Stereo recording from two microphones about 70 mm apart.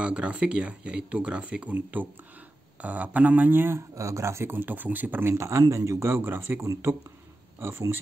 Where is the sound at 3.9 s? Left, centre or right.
Right.